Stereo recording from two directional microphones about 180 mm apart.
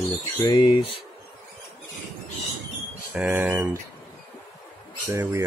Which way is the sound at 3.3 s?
10° right (ahead or behind).